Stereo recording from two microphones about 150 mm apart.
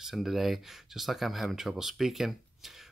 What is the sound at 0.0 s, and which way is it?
Speech, centre (ahead or behind).